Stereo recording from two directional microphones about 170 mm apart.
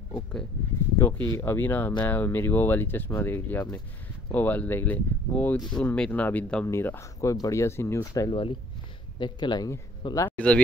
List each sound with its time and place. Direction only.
0.1 s speech: 5° left (ahead or behind)
8.3 s speech: 30° left (ahead or behind)
10.3 s speech: 5° left (ahead or behind)